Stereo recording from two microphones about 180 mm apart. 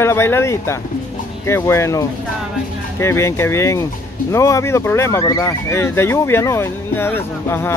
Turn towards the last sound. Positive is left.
turn(degrees=10)  # may be behind; listen again after turning